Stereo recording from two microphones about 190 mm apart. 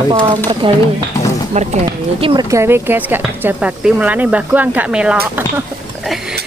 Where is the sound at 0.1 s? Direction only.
25° right (ahead or behind).